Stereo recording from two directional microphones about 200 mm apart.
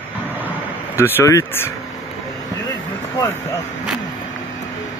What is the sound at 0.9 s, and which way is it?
Speech, 10° left (ahead or behind).